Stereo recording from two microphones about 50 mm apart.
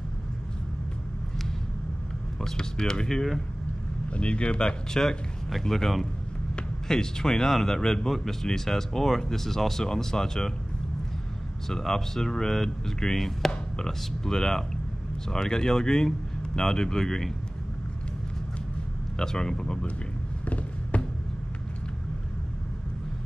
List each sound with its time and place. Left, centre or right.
2.4 s a man's voice: centre
4.1 s a man's voice: left
11.7 s a man's voice: centre
19.1 s a man's voice: centre
20.4 s a sound: left